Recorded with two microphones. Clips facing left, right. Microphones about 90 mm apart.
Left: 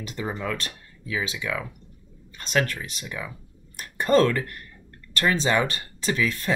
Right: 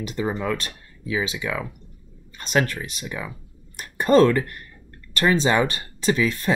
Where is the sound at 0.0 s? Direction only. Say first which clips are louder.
Right 5 dB; 20° right (ahead or behind).